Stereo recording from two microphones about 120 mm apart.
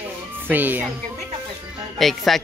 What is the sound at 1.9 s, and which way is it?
Speech, centre (ahead or behind).